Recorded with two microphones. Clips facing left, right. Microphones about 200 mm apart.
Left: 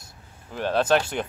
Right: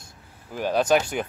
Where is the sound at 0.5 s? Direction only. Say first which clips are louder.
Right 1 dB; 10° right (ahead or behind).